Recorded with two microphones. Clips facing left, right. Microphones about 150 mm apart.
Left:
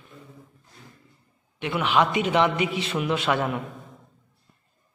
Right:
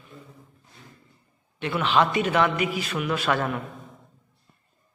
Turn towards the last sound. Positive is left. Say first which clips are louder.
# left 1 dB
turn(degrees=20)  # may be behind; listen again after turning